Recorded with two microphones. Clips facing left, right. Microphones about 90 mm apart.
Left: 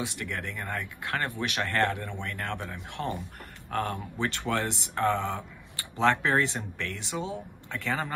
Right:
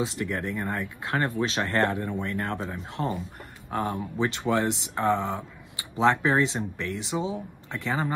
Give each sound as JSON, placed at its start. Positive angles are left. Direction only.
{"t": 0.0, "sound": "speech", "side_deg": -20}